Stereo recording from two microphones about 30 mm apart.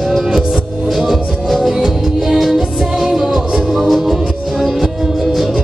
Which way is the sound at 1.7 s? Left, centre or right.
Centre.